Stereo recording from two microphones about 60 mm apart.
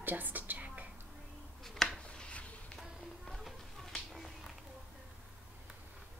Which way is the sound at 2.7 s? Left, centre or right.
Centre.